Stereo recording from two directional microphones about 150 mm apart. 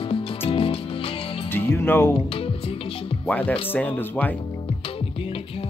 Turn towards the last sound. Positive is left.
turn(degrees=10)  # may be behind; listen again after turning